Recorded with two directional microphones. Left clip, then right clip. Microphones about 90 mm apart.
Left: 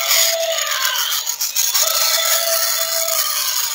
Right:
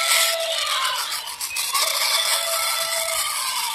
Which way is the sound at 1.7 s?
30° left (ahead or behind).